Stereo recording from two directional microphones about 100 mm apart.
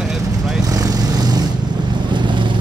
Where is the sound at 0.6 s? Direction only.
40° right (ahead or behind).